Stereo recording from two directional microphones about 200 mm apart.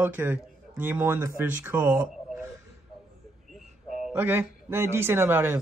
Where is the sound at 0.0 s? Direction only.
10° right (ahead or behind).